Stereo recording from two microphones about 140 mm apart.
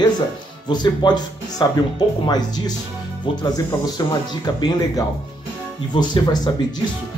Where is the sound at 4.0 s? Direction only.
30° left (ahead or behind).